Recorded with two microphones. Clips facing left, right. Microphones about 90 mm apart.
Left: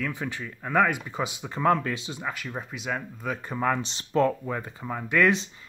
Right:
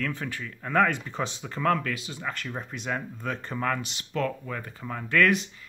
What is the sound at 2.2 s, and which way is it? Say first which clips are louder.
Speech: right 1 dB; 5° left (ahead or behind).